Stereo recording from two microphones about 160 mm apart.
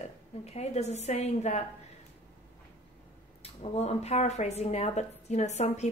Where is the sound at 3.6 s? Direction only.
40° left (ahead or behind).